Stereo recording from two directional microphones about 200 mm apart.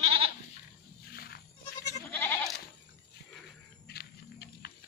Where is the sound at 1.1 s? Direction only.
50° left (ahead or behind).